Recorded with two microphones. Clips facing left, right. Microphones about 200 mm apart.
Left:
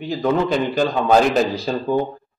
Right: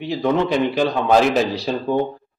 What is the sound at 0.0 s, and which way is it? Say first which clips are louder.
Speech: even; centre (ahead or behind).